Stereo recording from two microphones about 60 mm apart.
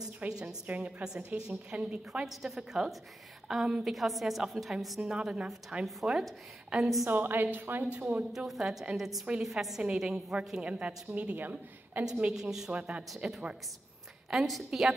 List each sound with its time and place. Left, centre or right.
0.2 s a woman's voice: right
1.0 s a woman's voice: centre
2.2 s a woman's voice: centre
7.1 s a woman's voice: right
8.3 s a woman's voice: centre; by 12.0 s right
12.2 s a woman's voice: centre
12.7 s a woman's voice: right
13.1 s a woman's voice: centre